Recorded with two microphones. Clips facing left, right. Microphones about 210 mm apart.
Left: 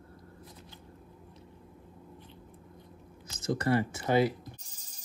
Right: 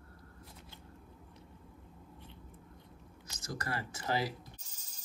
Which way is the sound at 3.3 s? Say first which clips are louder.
Left 12 dB; 25° left (ahead or behind).